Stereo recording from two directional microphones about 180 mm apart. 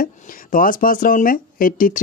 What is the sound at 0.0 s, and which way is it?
Speech, 50° left (ahead or behind).